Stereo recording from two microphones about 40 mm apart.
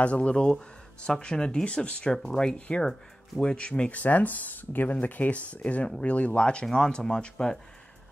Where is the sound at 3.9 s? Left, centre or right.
Left; by 7.6 s centre.